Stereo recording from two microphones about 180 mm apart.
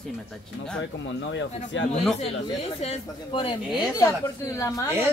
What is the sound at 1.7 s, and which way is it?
Speech, 90° left.